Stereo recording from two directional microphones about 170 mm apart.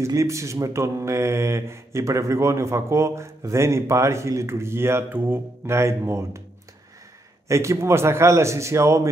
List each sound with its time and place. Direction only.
0.0 s speech: 15° right (ahead or behind)
7.4 s speech: 15° right (ahead or behind)